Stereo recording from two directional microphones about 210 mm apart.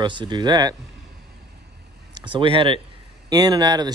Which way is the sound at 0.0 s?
20° right (ahead or behind).